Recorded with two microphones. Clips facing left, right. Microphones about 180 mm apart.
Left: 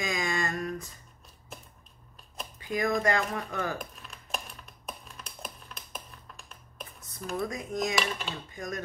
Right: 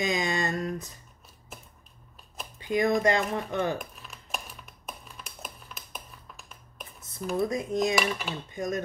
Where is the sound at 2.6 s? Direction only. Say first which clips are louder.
Right 4 dB; 25° right (ahead or behind).